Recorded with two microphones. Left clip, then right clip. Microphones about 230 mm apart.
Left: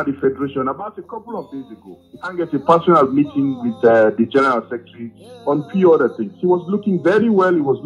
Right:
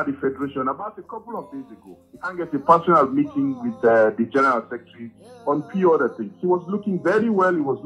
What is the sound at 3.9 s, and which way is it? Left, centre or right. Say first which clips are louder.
A man's voice: left 4 dB; left.